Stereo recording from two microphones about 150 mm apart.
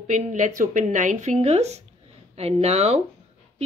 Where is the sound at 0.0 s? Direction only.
55° right (ahead or behind).